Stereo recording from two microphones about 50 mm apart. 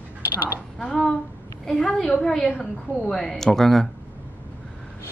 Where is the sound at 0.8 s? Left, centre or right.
Centre.